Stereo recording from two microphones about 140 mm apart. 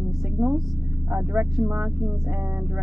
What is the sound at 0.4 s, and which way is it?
Speech, 15° right (ahead or behind).